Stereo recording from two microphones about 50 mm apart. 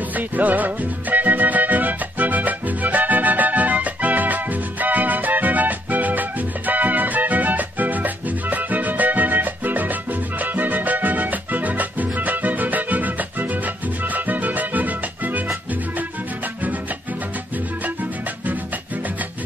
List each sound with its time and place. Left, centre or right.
0.1 s music: right